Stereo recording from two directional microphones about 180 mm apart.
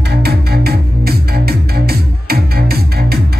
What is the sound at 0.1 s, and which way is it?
Music, 60° right (ahead or behind).